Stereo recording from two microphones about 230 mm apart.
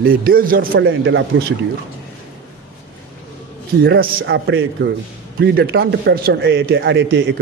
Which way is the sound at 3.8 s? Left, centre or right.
Right.